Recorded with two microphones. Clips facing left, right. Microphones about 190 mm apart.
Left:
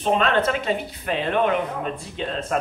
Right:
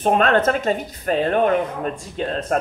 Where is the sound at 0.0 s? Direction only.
50° right (ahead or behind).